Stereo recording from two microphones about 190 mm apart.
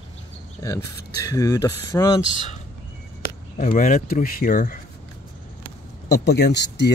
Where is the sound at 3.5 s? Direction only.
45° left (ahead or behind).